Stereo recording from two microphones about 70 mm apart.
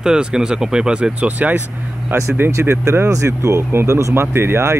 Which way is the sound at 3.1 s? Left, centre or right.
Right.